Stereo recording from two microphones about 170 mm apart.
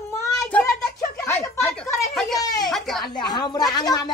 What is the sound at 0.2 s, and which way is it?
Child singing, 10° left (ahead or behind).